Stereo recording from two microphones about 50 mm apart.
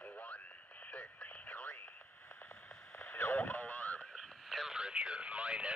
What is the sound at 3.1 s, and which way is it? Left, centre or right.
Radio, left.